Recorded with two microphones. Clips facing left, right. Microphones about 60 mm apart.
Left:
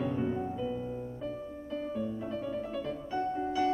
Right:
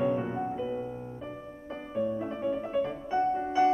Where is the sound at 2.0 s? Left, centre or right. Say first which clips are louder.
Right 5 dB; right.